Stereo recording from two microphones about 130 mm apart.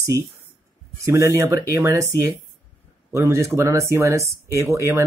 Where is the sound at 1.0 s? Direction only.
25° right (ahead or behind).